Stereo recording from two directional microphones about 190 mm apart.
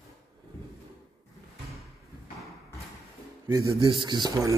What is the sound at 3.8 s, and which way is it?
Speech, 25° right (ahead or behind).